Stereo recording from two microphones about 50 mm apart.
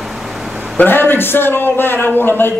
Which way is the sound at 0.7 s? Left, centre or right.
Left.